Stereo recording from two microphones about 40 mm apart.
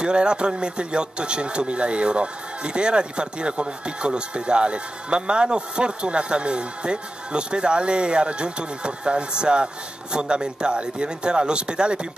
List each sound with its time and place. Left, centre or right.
0.0 s speech: right